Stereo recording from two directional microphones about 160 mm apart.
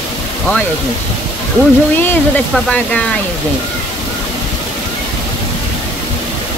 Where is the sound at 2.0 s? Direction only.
10° left (ahead or behind).